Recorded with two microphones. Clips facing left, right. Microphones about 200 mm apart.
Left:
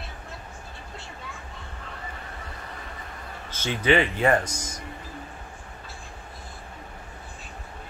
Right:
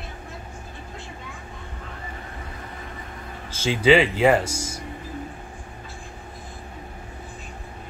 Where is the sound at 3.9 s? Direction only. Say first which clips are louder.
Right 5 dB; 90° right.